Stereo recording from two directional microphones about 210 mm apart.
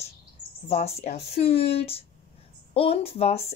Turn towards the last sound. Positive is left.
turn(degrees=30)  # may be behind; listen again after turning